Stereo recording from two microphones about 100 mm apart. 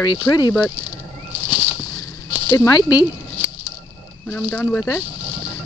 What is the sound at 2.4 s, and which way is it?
Speech, 35° left (ahead or behind).